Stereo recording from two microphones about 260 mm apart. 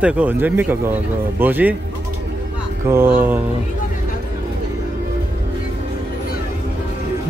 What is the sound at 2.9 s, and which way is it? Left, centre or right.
Speech, centre.